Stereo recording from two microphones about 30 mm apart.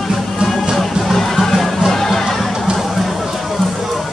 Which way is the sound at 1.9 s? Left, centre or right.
Centre.